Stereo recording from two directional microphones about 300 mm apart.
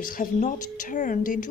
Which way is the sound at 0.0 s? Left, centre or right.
Left.